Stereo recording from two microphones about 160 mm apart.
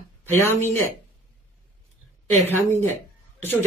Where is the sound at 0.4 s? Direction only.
15° left (ahead or behind).